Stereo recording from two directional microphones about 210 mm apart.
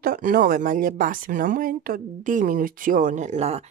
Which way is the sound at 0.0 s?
45° right (ahead or behind).